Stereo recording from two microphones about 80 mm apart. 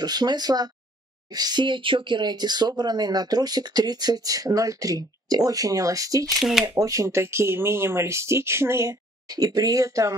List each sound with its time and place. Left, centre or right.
0.0 s speech: right
9.3 s speech: right